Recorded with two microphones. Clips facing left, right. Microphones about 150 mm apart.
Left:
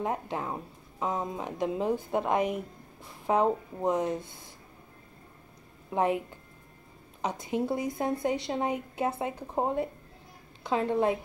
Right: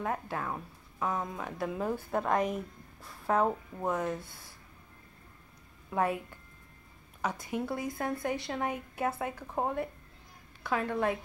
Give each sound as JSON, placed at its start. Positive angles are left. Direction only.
{"t": 0.0, "sound": "speech", "side_deg": 20}
{"t": 5.9, "sound": "a woman's voice", "side_deg": 20}